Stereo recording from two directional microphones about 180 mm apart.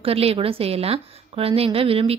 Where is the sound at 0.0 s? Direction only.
35° right (ahead or behind).